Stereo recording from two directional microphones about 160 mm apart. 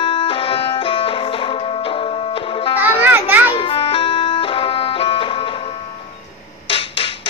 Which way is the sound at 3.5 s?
35° left (ahead or behind).